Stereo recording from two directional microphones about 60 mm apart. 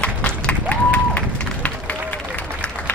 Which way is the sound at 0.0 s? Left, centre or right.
Left.